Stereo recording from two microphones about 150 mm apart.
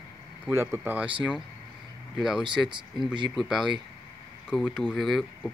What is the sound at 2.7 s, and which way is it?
Speech, 30° right (ahead or behind).